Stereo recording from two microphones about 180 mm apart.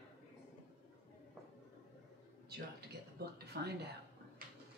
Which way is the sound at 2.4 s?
65° right (ahead or behind).